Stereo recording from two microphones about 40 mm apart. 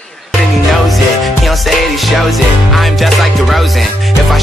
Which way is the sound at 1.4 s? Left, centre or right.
Centre.